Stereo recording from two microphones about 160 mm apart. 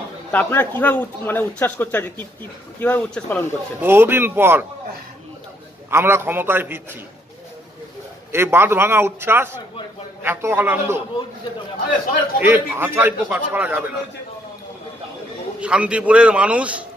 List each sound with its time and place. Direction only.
0.3 s speech: 10° left (ahead or behind)
3.8 s a man's voice: 15° right (ahead or behind)
5.9 s a man's voice: 15° right (ahead or behind)
8.3 s a man's voice: 15° right (ahead or behind)
12.4 s a man's voice: 10° right (ahead or behind)
15.6 s a man's voice: 5° right (ahead or behind)